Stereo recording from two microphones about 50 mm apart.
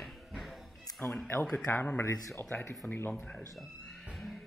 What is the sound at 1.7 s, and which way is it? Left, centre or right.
Speech, left.